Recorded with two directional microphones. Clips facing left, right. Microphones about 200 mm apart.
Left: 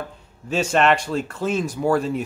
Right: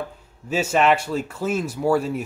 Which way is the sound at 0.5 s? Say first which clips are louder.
Even; 5° right (ahead or behind).